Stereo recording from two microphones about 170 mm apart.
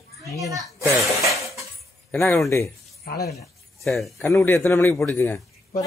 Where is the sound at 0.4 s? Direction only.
20° right (ahead or behind).